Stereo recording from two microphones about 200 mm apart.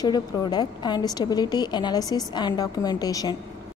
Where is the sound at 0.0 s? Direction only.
20° left (ahead or behind).